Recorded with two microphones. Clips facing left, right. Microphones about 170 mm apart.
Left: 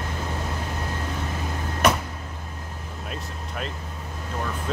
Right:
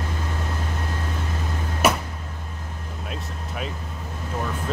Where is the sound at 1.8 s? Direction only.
5° right (ahead or behind).